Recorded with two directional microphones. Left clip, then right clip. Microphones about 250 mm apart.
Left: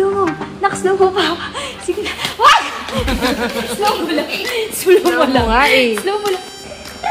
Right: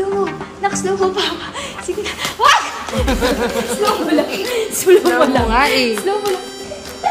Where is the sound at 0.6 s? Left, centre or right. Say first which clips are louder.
Left 3 dB; left.